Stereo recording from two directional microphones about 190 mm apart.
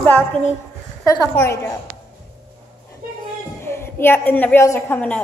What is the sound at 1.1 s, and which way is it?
Speech, 15° left (ahead or behind).